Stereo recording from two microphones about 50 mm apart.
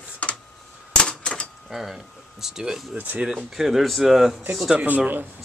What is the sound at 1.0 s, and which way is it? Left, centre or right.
Typewriter, centre.